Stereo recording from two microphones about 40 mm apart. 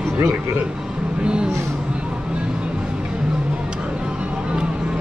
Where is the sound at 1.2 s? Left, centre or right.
Right.